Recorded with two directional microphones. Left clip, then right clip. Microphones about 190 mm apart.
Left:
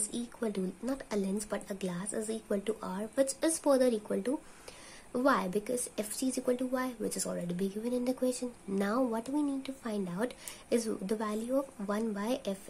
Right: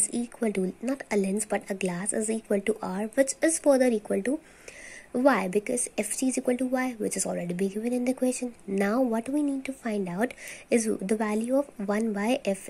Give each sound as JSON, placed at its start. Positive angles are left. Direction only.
{"t": 0.1, "sound": "a woman's voice", "side_deg": -25}